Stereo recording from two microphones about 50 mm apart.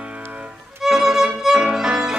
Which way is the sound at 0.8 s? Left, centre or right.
Centre.